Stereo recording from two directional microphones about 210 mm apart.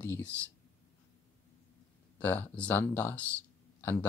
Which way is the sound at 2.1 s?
10° left (ahead or behind).